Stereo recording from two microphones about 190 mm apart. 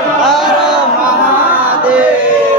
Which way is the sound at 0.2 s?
Centre (ahead or behind).